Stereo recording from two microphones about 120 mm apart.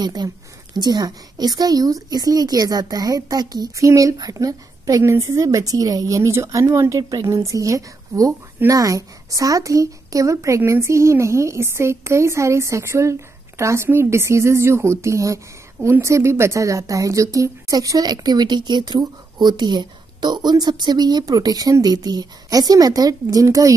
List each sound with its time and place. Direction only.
0.0 s a woman's voice: 35° right (ahead or behind)